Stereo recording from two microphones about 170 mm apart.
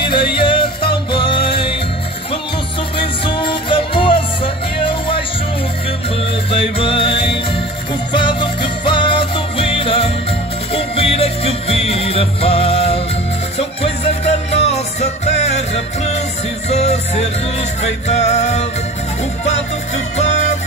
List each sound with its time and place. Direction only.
0.4 s music: 30° left (ahead or behind)
3.0 s music: 30° left (ahead or behind)
6.5 s music: 35° left (ahead or behind)
20.2 s music: 40° left (ahead or behind)